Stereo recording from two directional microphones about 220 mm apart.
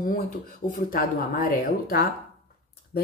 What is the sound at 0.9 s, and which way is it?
A woman's voice, 40° left (ahead or behind).